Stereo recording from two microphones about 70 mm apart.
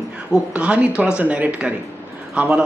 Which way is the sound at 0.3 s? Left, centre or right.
Centre.